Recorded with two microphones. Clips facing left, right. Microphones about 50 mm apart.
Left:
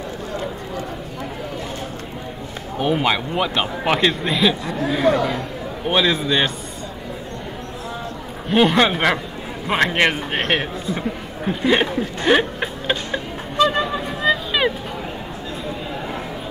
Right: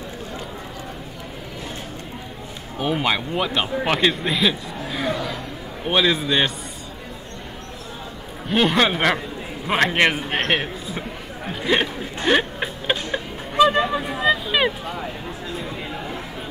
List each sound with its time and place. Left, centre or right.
2.8 s a man's voice: centre
5.0 s speech: left
5.9 s a man's voice: centre
8.5 s a man's voice: centre
11.6 s a sound: centre